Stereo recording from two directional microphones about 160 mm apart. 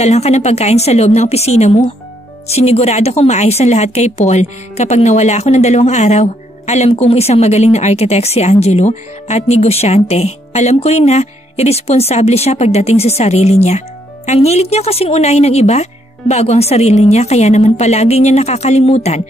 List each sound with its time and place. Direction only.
0.0 s speech: 45° left (ahead or behind)